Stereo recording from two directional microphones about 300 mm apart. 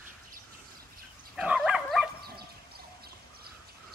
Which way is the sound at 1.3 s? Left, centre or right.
Centre.